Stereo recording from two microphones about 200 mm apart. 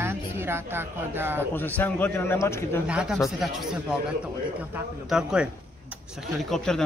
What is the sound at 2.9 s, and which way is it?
A man's voice, 5° right (ahead or behind).